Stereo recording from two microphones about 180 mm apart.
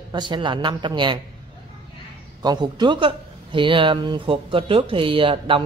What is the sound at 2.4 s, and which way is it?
Speech, 25° right (ahead or behind).